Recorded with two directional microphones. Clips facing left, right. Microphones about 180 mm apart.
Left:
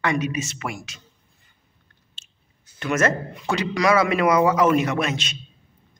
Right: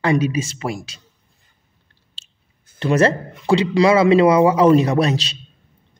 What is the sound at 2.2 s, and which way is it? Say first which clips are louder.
Chewing: right 3 dB; 35° right (ahead or behind).